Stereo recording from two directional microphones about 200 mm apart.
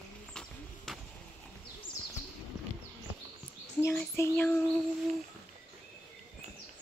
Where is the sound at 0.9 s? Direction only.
Centre (ahead or behind).